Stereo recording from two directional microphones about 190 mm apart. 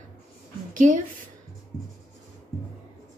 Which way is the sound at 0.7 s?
45° right (ahead or behind).